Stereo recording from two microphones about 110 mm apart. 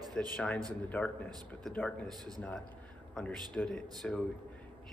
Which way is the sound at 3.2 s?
10° left (ahead or behind).